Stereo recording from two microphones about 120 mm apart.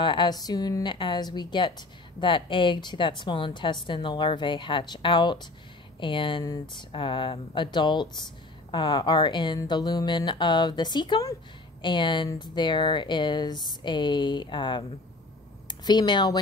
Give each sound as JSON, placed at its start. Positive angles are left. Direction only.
{"t": 0.0, "sound": "a woman's voice", "side_deg": 40}